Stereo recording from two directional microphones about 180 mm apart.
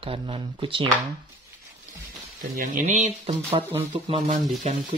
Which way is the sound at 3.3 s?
30° right (ahead or behind).